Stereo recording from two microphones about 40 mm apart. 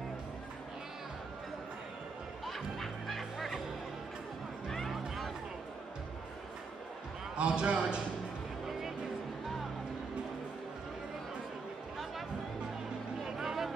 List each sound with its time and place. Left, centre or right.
2.4 s music: centre
4.6 s music: centre
7.3 s a man's voice: right
8.6 s music: centre
13.2 s vehicle: centre